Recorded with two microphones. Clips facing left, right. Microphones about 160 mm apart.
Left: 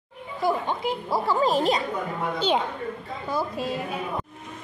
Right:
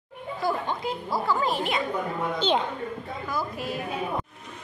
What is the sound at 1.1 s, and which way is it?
Speech, 30° left (ahead or behind).